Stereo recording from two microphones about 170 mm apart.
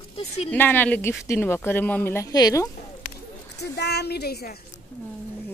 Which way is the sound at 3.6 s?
75° left (ahead or behind).